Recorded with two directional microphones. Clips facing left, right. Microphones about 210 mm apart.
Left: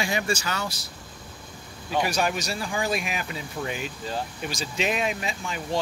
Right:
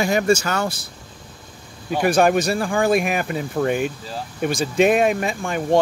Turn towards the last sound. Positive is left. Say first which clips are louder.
# right 10 dB
turn(degrees=-55)  # may be behind; listen again after turning